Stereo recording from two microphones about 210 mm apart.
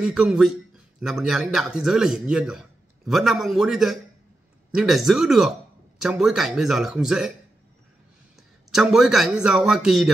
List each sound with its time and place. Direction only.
0.0 s a man's voice: 5° right (ahead or behind)
8.7 s a man's voice: centre (ahead or behind)